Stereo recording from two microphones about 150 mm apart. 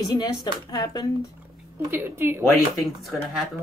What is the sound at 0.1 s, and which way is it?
Speech, 25° left (ahead or behind).